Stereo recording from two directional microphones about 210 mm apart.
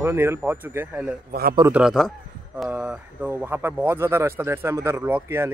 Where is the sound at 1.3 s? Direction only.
45° right (ahead or behind).